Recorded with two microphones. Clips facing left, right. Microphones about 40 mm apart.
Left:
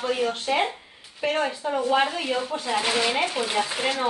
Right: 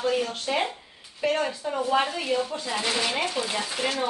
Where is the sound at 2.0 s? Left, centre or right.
Left.